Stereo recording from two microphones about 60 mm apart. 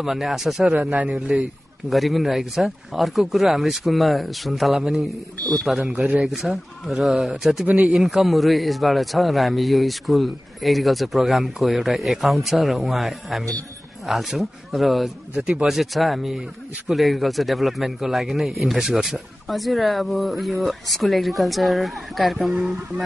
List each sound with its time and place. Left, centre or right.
0.0 s a man's voice: centre
0.7 s speech: right
1.3 s speech: centre
1.9 s a man's voice: centre
7.6 s speech: right
7.9 s a man's voice: centre
15.3 s a man's voice: centre